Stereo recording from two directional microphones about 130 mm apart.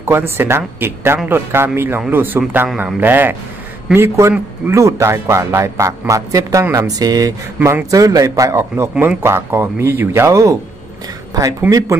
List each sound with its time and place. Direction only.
0.0 s a man's voice: 20° right (ahead or behind)
11.7 s speech: 10° right (ahead or behind)